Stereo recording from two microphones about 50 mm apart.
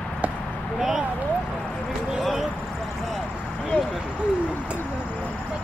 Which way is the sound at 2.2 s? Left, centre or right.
Centre.